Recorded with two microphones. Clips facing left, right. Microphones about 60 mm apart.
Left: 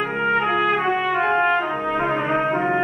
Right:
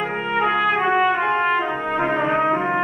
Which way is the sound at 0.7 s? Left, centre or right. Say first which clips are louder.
Right 1 dB; centre.